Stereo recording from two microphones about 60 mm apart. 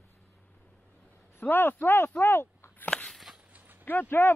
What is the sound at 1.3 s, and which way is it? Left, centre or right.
Speech, left.